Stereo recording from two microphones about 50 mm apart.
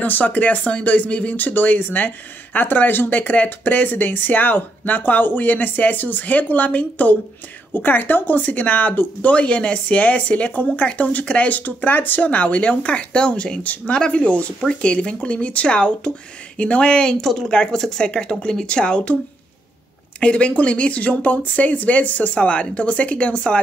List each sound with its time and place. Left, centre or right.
0.0 s speech: left
17.2 s speech: centre; by 19.1 s left
20.2 s speech: left